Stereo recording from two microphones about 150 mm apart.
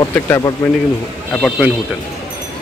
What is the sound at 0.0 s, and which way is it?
Speech, 20° left (ahead or behind).